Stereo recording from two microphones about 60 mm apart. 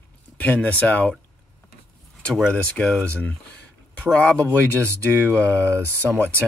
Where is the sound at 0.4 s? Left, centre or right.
Left.